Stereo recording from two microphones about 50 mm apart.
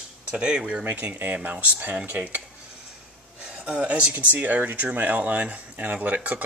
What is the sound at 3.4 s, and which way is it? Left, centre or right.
Speech, centre.